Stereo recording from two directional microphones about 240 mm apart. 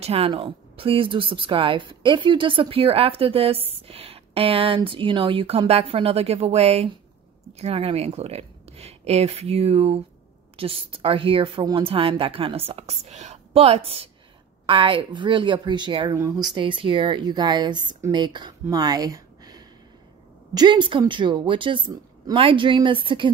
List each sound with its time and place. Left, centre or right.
0.0 s speech: right